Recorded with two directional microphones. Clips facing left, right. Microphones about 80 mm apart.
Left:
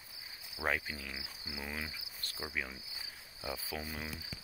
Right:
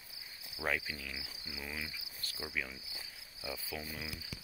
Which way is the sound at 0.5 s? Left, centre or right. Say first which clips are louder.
Left 1 dB; left.